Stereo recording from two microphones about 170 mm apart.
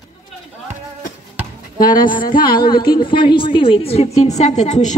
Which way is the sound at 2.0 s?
25° left (ahead or behind).